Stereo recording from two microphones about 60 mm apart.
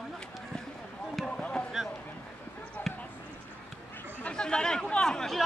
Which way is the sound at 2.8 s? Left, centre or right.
Left.